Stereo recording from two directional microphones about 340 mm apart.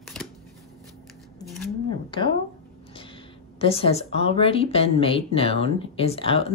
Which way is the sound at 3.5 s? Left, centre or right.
Centre.